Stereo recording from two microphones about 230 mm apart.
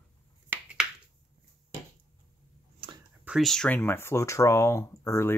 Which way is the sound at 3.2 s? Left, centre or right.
Centre.